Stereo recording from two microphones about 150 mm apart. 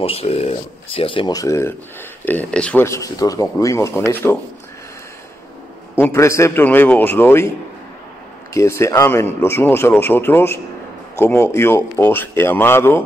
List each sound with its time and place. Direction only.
0.0 s speech: 40° left (ahead or behind); by 1.7 s 20° left (ahead or behind)
2.2 s speech: 10° left (ahead or behind)
5.9 s speech: 15° left (ahead or behind)
8.5 s speech: 20° left (ahead or behind)